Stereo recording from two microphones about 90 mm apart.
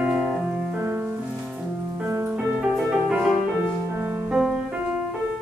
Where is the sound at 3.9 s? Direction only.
25° right (ahead or behind).